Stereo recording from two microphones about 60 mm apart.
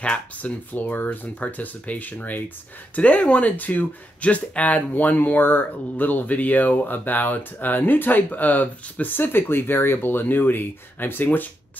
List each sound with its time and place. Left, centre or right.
0.0 s speech: left